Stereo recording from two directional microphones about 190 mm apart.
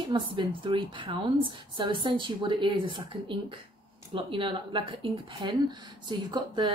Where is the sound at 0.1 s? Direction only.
25° right (ahead or behind).